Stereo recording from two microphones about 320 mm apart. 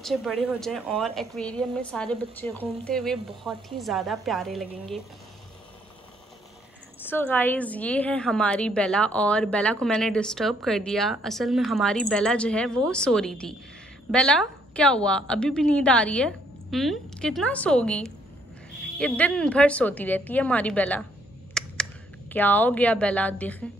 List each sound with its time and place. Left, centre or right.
0.0 s a woman's voice: centre
7.0 s a woman's voice: centre
21.6 s a sound: centre
22.3 s a woman's voice: centre